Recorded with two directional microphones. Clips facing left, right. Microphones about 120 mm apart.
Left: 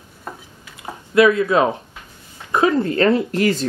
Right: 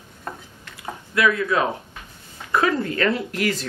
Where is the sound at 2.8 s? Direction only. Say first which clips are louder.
Left 6 dB; 30° left (ahead or behind).